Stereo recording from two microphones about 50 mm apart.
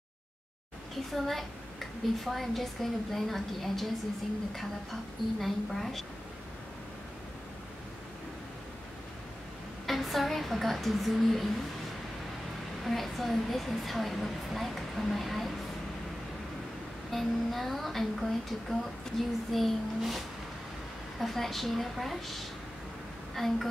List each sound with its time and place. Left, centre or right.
1.1 s speech: centre
5.4 s speech: centre
9.8 s speech: centre
12.8 s speech: centre
17.1 s speech: centre